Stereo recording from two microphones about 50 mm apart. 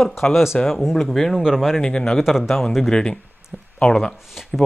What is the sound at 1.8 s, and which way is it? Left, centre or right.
Speech, centre.